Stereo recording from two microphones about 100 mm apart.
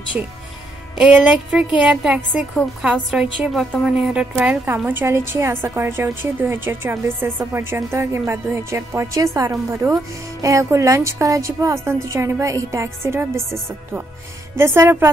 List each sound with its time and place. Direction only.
0.2 s a woman's voice: 10° right (ahead or behind)
4.8 s a woman's voice: 25° right (ahead or behind)
14.6 s a woman's voice: 25° right (ahead or behind)